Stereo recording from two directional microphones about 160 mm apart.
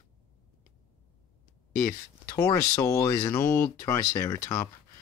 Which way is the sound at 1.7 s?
60° left (ahead or behind).